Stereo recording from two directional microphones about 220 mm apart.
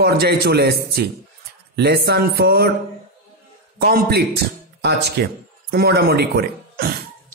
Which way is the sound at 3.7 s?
45° right (ahead or behind).